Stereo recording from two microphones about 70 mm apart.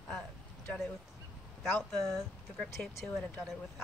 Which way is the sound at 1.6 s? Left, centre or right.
Centre.